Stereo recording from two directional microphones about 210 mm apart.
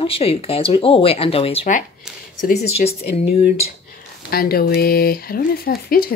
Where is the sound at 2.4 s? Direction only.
45° left (ahead or behind).